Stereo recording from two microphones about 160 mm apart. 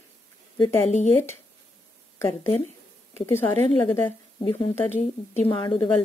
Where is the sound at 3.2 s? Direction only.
15° left (ahead or behind).